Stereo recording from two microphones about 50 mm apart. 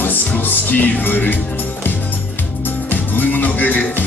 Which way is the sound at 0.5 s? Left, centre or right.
Left.